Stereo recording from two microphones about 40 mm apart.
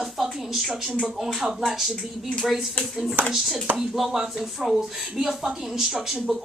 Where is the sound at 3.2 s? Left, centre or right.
Right.